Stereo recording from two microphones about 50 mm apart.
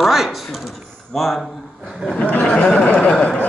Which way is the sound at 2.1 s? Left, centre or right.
Left.